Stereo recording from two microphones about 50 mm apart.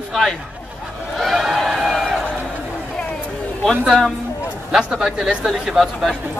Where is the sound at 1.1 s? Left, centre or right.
Centre.